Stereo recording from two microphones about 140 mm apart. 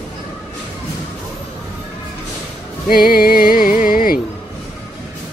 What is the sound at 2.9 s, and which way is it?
Music, 90° left.